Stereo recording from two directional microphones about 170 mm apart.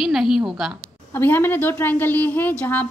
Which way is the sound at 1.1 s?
10° left (ahead or behind).